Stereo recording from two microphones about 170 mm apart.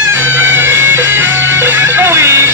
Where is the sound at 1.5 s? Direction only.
10° right (ahead or behind).